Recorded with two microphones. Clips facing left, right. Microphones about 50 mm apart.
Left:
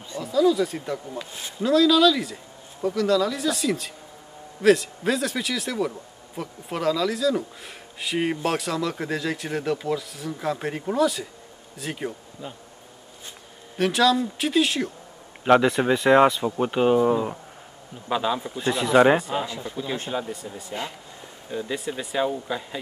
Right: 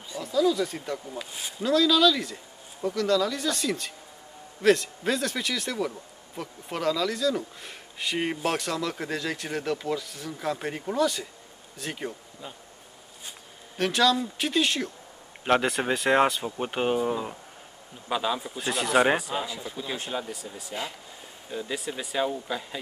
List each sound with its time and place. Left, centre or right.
0.2 s speech: centre
13.7 s speech: centre